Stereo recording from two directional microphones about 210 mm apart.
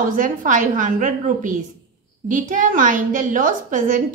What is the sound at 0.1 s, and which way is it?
A woman's voice, 40° right (ahead or behind).